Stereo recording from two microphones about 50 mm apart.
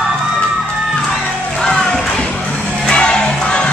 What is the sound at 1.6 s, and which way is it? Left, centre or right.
Music, centre.